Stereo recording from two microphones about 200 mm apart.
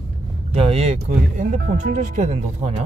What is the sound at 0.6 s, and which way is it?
Speech, 30° right (ahead or behind).